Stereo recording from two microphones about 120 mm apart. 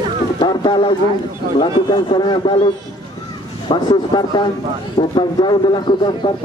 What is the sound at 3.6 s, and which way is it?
Speech, 40° left (ahead or behind).